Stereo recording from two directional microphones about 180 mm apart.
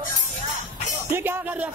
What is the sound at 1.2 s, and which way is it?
Music, 10° right (ahead or behind).